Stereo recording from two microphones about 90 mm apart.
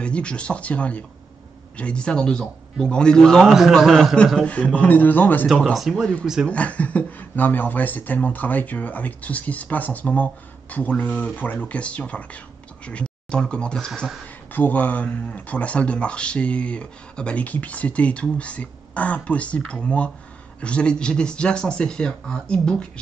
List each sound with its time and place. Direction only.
0.0 s speech: 10° left (ahead or behind)
5.5 s speech: centre (ahead or behind)
6.5 s speech: 15° left (ahead or behind)
14.2 s speech: 20° left (ahead or behind)